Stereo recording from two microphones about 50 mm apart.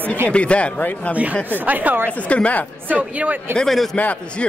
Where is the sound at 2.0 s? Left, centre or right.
Left.